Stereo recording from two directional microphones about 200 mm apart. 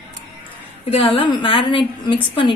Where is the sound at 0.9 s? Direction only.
25° left (ahead or behind).